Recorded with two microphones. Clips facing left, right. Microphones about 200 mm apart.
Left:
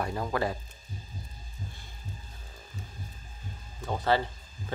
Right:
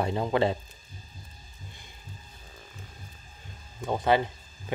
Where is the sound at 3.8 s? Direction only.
15° right (ahead or behind).